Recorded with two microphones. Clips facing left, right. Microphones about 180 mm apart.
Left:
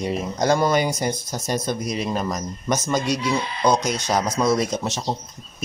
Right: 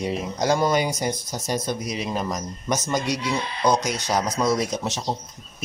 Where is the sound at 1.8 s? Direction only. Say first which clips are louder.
Left 3 dB; 50° left (ahead or behind).